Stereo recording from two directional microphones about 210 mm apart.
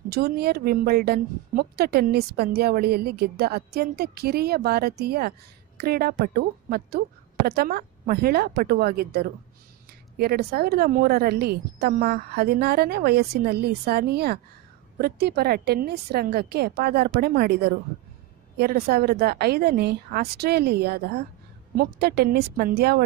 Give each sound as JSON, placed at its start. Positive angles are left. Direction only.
{"t": 0.1, "sound": "a woman's voice", "side_deg": -50}